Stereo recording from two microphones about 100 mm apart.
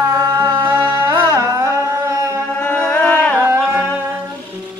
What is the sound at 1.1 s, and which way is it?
Carnatic music, 30° right (ahead or behind).